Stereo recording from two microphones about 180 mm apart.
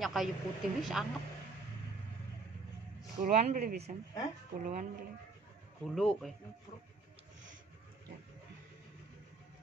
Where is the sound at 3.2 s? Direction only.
40° right (ahead or behind).